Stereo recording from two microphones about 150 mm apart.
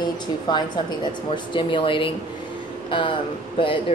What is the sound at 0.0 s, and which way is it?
Speech, 30° left (ahead or behind).